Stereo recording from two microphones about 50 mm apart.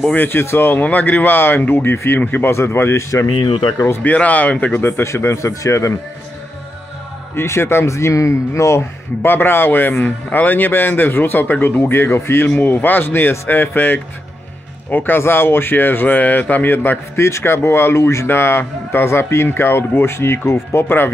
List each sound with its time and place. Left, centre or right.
0.1 s speech: left
0.4 s a man's voice: left
0.8 s speech: left
2.5 s speech: left
4.0 s speech: left
4.7 s a man's voice: left
5.0 s speech: left
7.3 s speech: left
7.9 s speech: left
9.2 s a man's voice: left
11.8 s a man's voice: left
12.4 s speech: left
17.1 s a man's voice: left